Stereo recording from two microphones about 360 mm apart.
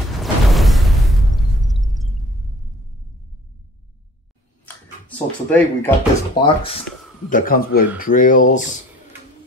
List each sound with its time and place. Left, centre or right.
0.2 s music: centre
5.0 s speech: centre; by 8.6 s left